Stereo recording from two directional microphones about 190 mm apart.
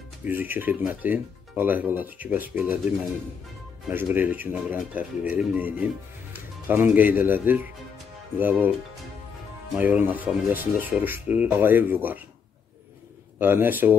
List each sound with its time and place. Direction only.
0.2 s speech: 10° right (ahead or behind)
3.9 s speech: 10° right (ahead or behind)
9.8 s speech: 10° right (ahead or behind)
13.4 s speech: 10° right (ahead or behind)